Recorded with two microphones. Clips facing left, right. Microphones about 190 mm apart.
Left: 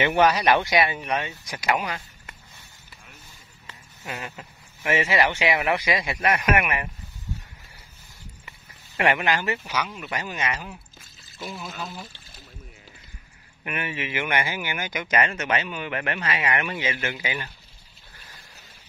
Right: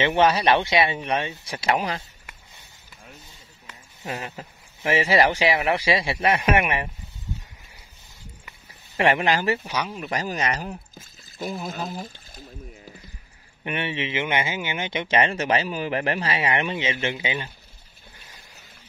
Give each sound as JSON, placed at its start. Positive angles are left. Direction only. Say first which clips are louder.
{"t": 0.0, "sound": "speech", "louder": "even", "side_deg": -25}
{"t": 4.1, "sound": "speech", "louder": "right 3 dB", "side_deg": -30}
{"t": 8.9, "sound": "speech", "louder": "right 2 dB", "side_deg": -30}
{"t": 13.7, "sound": "speech", "louder": "right 3 dB", "side_deg": -30}